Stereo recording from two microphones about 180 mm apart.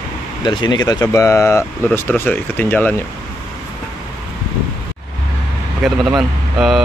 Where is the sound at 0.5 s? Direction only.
25° left (ahead or behind); by 3.0 s 10° left (ahead or behind).